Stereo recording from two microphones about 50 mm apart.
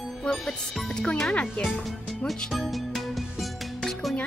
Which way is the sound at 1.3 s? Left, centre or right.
Left.